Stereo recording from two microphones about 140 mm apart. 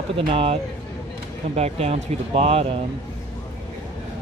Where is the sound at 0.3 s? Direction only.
45° right (ahead or behind).